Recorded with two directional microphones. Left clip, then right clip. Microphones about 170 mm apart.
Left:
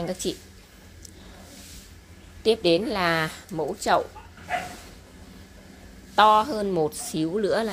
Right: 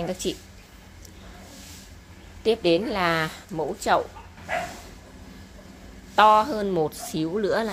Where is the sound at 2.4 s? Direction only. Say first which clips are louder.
Even; 20° left (ahead or behind).